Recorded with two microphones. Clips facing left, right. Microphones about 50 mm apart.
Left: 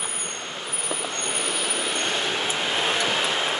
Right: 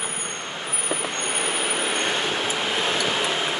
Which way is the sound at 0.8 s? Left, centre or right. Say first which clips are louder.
Right 2 dB; right.